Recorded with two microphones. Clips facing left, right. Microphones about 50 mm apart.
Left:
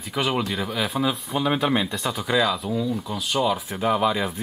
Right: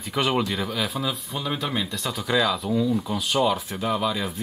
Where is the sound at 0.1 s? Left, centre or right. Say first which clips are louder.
Right 1 dB; centre.